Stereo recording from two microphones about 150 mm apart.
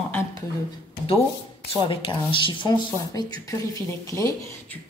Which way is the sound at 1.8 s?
35° left (ahead or behind).